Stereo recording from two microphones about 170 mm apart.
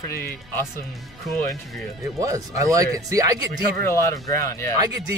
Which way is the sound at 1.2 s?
Centre (ahead or behind).